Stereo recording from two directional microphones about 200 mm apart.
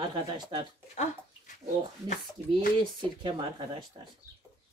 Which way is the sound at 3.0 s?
25° right (ahead or behind).